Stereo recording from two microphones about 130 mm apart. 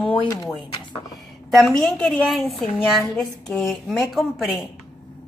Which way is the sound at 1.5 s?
5° left (ahead or behind).